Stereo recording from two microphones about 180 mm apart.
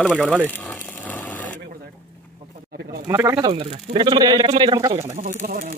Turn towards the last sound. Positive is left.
turn(degrees=-55)  # may be behind; listen again after turning